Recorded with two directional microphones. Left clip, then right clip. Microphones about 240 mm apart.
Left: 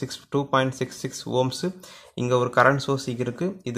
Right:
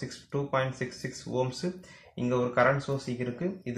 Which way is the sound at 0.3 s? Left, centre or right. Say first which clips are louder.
Left 7 dB; left.